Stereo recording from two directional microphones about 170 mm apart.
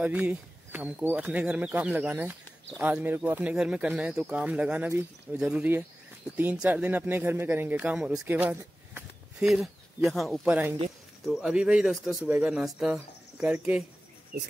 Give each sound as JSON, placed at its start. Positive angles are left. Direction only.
{"t": 0.0, "sound": "speech", "side_deg": -10}